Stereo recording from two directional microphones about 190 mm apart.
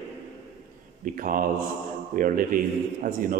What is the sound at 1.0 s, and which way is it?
A man's voice, 45° right (ahead or behind).